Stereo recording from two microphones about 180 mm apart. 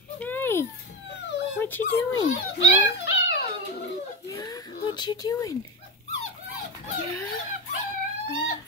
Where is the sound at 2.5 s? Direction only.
75° left (ahead or behind).